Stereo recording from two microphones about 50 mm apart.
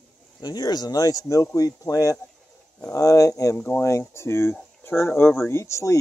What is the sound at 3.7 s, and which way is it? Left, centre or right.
Speech, left.